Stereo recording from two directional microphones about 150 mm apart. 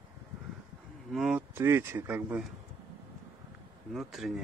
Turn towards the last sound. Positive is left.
turn(degrees=0)  # may be behind; listen again after turning